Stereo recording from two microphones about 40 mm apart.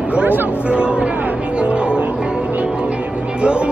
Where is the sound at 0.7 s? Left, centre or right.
Right.